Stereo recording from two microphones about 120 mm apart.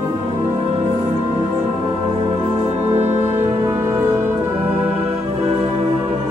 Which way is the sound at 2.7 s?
60° right (ahead or behind).